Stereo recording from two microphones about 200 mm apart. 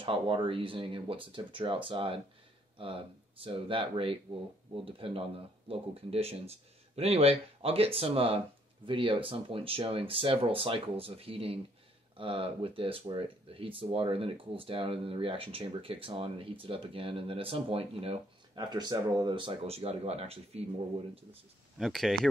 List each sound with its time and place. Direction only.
0.0 s speech: 25° right (ahead or behind)
21.7 s speech: centre (ahead or behind)